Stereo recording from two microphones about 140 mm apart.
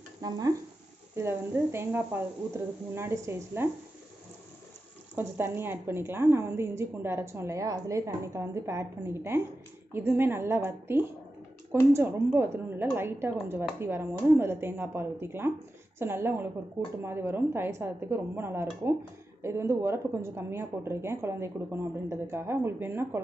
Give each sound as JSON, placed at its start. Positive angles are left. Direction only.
{"t": 0.2, "sound": "stir", "side_deg": -30}
{"t": 1.1, "sound": "a woman's voice", "side_deg": -20}
{"t": 5.1, "sound": "a woman's voice", "side_deg": -15}